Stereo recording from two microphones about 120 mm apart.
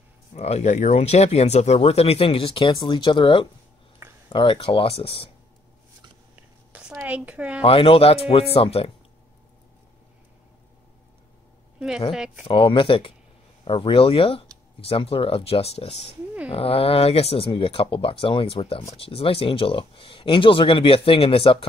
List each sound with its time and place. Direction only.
0.3 s speech: 65° left (ahead or behind); by 5.3 s 50° left (ahead or behind)
6.3 s a sound: 10° right (ahead or behind)
7.6 s speech: 50° left (ahead or behind)
12.1 s speech: 5° right (ahead or behind)
12.4 s speech: 45° left (ahead or behind)